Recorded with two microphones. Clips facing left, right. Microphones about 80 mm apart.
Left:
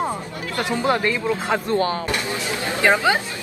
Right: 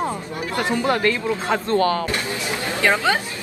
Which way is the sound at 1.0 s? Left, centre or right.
Centre.